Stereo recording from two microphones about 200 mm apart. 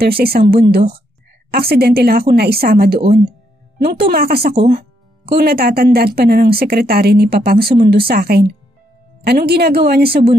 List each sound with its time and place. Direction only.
0.0 s speech: 50° right (ahead or behind)
4.0 s speech: 50° right (ahead or behind)